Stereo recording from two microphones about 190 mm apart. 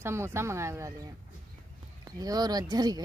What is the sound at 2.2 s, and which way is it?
Speech, 20° right (ahead or behind).